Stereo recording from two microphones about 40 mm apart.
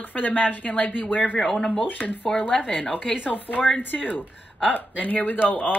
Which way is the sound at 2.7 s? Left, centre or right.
Left.